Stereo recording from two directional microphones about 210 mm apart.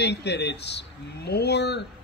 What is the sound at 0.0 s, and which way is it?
Speech, 55° left (ahead or behind).